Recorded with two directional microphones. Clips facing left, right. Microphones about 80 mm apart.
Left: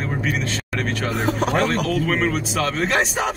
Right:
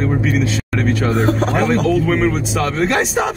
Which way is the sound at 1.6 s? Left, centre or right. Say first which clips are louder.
Right 5 dB; centre.